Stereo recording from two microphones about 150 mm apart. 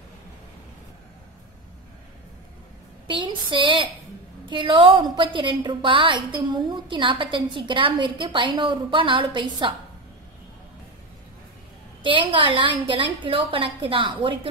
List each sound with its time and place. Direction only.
3.1 s a sound: 35° right (ahead or behind)
4.5 s a woman's voice: 35° right (ahead or behind)
12.0 s a woman's voice: 35° right (ahead or behind)